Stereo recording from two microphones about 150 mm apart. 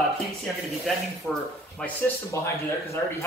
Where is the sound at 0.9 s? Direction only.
5° left (ahead or behind).